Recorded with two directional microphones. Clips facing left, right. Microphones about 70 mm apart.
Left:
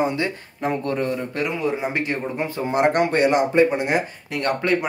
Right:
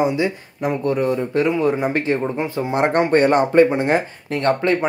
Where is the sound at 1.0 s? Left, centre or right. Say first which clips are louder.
Right 5 dB; right.